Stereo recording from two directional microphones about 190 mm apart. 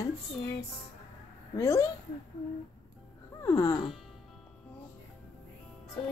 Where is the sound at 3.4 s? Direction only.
15° left (ahead or behind).